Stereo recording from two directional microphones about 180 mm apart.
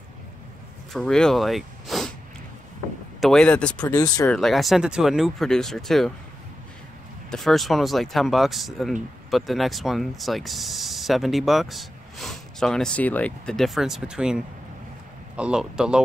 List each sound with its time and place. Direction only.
0.9 s speech: 5° left (ahead or behind)
3.2 s speech: 5° left (ahead or behind)
3.8 s speech: 20° left (ahead or behind)
4.3 s speech: centre (ahead or behind)
7.2 s speech: centre (ahead or behind)